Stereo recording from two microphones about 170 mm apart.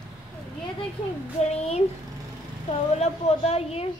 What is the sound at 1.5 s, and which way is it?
A woman's voice, 40° left (ahead or behind).